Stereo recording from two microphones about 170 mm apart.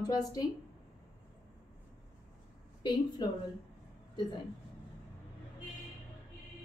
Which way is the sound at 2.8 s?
25° left (ahead or behind).